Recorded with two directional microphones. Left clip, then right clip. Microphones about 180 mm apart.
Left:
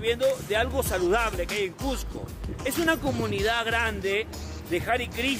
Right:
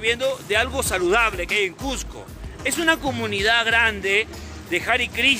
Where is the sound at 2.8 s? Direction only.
20° left (ahead or behind).